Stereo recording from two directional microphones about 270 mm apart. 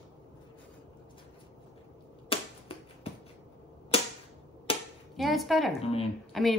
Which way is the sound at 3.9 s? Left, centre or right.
Left.